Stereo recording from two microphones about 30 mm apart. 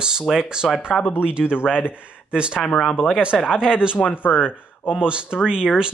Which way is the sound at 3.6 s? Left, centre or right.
Right.